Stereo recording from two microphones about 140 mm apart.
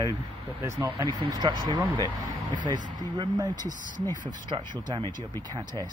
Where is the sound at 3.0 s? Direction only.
30° right (ahead or behind).